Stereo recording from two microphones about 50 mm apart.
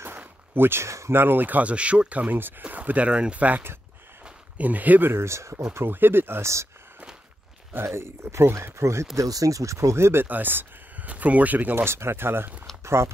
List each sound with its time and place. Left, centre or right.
0.6 s speech: right
0.8 s speech: right
1.1 s speech: right
5.1 s speech: right
5.9 s speech: right
6.4 s speech: right
7.8 s speech: right
9.1 s speech: right
10.2 s a sound: right
11.1 s speech: right
11.7 s speech: right
12.8 s speech: right